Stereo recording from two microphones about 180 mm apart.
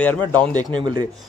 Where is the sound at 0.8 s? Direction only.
25° right (ahead or behind).